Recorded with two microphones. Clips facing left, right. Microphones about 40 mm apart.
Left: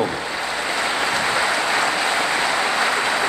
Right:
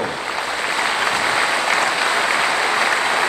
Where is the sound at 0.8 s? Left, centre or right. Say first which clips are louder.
Right 2 dB; right.